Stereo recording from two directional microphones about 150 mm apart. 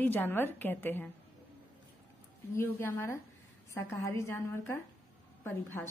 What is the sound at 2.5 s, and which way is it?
A woman's voice, 15° left (ahead or behind).